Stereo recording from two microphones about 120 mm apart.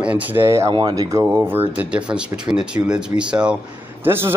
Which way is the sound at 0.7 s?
35° right (ahead or behind).